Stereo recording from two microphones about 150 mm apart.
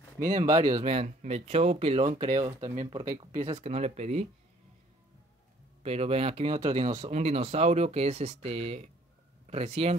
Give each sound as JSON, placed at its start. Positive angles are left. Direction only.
{"t": 0.2, "sound": "speech", "side_deg": -60}
{"t": 1.0, "sound": "speech", "side_deg": -50}
{"t": 2.0, "sound": "speech", "side_deg": -25}
{"t": 2.8, "sound": "speech", "side_deg": -35}
{"t": 5.8, "sound": "speech", "side_deg": -40}